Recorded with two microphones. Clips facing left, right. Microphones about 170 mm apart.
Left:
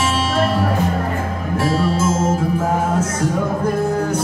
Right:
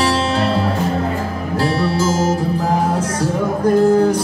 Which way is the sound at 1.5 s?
80° right.